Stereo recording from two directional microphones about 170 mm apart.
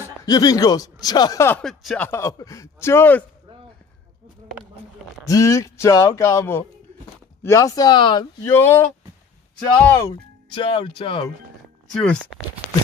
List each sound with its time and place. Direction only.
0.2 s speech: 20° left (ahead or behind)
1.6 s speech: centre (ahead or behind)
2.0 s speech: 15° left (ahead or behind)
5.2 s speech: 20° left (ahead or behind)
8.5 s speech: 15° left (ahead or behind)
9.8 s speech: 15° left (ahead or behind)
10.6 s speech: 30° left (ahead or behind)
11.9 s speech: 5° left (ahead or behind)